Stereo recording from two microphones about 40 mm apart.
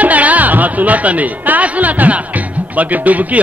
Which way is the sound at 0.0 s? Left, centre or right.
Right.